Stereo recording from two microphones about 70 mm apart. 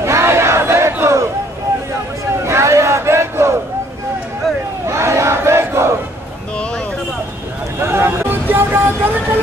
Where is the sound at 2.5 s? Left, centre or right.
Right.